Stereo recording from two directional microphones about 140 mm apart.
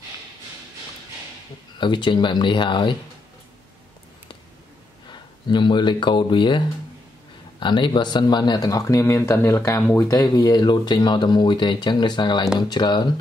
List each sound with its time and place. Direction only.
1.8 s speech: 35° left (ahead or behind)
5.5 s speech: 35° left (ahead or behind)
7.6 s speech: 35° left (ahead or behind)